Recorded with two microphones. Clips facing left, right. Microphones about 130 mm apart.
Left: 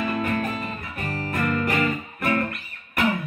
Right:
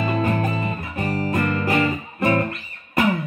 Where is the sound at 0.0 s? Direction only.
25° right (ahead or behind).